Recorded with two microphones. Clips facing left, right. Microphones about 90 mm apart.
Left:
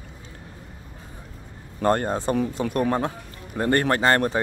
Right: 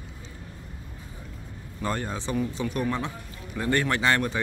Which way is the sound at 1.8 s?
50° left (ahead or behind).